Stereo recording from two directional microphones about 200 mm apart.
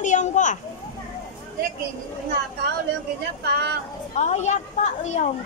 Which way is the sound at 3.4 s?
55° right (ahead or behind).